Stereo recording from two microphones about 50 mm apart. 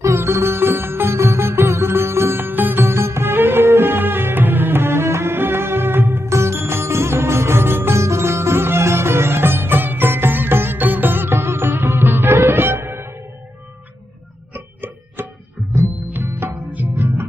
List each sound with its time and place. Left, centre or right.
0.0 s sitar: right
2.5 s music: right
6.2 s music: right
8.0 s music: right
14.5 s music: right
16.7 s music: right